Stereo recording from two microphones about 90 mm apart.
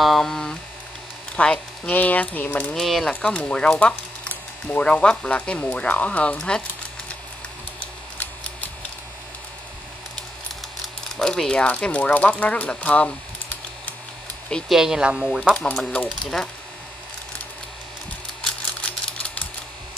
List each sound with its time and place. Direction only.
0.0 s speech: 5° left (ahead or behind)
2.8 s speech: centre (ahead or behind)
3.1 s speech: 10° left (ahead or behind)
7.8 s camera: 15° left (ahead or behind)
11.1 s speech: 5° left (ahead or behind)
14.7 s speech: 5° right (ahead or behind)
15.5 s speech: 10° left (ahead or behind)